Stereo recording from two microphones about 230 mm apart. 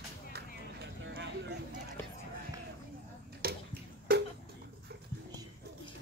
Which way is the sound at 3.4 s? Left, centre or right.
Right.